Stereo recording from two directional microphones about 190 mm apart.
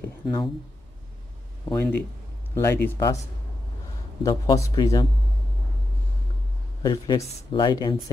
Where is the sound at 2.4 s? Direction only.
15° left (ahead or behind).